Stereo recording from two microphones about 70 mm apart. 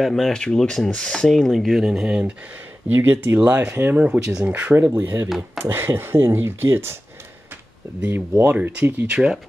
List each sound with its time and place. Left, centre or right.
0.0 s speech: centre
2.9 s speech: right
3.9 s speech: centre
5.6 s speech: right
8.1 s speech: right
8.5 s speech: right